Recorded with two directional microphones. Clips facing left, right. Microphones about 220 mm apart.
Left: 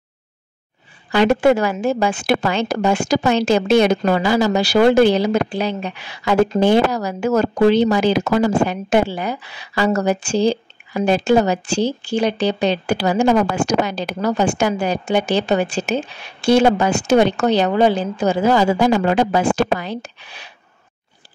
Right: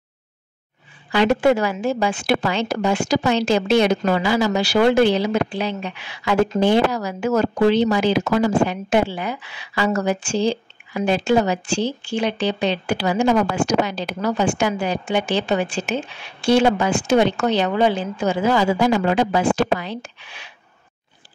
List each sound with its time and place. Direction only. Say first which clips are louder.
1.1 s a woman's voice: left 2 dB; 50° left (ahead or behind)